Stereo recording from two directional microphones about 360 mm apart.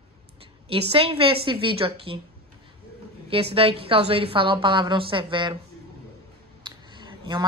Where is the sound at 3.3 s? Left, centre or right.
Centre.